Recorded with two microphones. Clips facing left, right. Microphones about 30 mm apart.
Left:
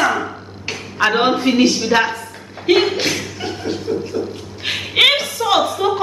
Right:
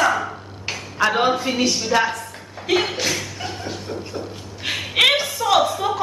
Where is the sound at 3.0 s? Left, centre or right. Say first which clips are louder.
Left 3 dB; centre.